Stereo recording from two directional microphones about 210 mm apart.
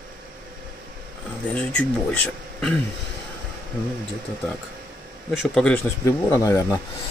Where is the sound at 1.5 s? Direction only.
5° left (ahead or behind).